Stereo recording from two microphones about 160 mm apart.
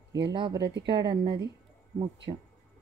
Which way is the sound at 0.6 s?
90° right.